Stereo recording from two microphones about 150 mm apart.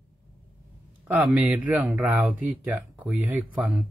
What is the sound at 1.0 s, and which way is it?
Speech, 10° right (ahead or behind).